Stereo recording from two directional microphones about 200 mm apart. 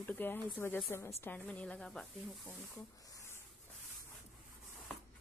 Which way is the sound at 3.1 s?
15° left (ahead or behind).